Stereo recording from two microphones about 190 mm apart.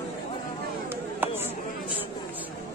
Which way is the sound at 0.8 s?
10° right (ahead or behind).